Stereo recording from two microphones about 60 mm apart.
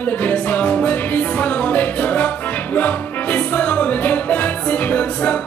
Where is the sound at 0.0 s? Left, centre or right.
Left.